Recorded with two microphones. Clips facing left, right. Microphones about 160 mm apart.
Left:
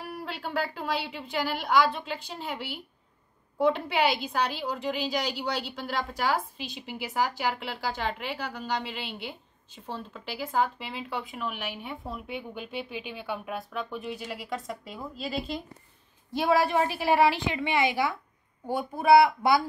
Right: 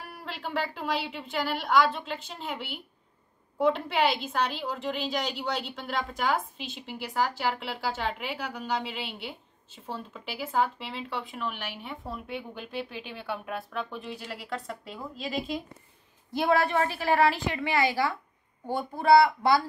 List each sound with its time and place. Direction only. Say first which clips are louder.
0.2 s a woman's voice: even; centre (ahead or behind)